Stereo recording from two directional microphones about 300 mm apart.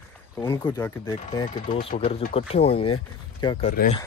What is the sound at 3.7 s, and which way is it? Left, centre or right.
Speech, left.